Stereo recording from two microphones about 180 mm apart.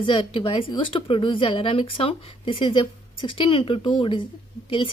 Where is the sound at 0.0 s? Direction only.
30° left (ahead or behind).